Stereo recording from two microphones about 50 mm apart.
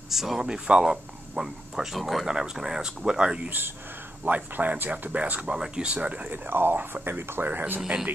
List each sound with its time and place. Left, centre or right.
0.1 s speech: centre
0.4 s speech: centre
3.4 s speech: right
5.5 s speech: centre
6.3 s speech: right